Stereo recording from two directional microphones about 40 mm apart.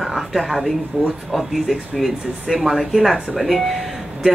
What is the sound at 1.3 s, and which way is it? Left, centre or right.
Speech, centre.